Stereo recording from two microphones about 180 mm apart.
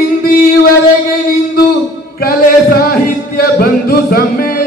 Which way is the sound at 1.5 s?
55° left (ahead or behind).